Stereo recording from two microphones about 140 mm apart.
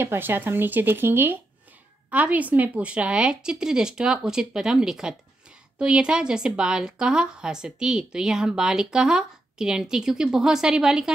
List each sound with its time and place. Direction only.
0.0 s a woman's voice: 15° right (ahead or behind)